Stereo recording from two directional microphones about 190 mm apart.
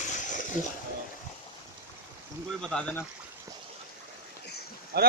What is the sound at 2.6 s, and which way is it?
Speech, 5° left (ahead or behind).